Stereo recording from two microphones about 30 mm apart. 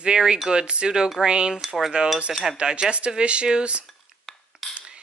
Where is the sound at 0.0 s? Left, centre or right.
Right.